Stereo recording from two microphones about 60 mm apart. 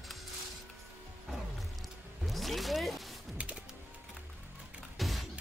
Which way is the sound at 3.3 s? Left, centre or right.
Centre.